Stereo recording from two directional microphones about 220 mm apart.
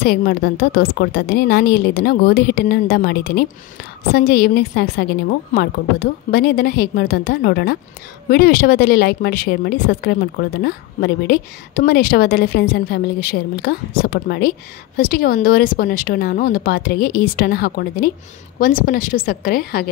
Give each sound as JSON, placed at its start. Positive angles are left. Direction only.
{"t": 0.0, "sound": "a woman's voice", "side_deg": 45}